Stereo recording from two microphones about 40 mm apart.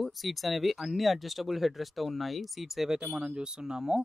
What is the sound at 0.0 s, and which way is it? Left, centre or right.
Speech, centre.